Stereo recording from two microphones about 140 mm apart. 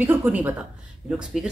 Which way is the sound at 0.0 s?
15° right (ahead or behind).